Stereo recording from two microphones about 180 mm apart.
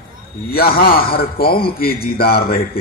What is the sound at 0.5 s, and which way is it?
A man's voice, 55° left (ahead or behind).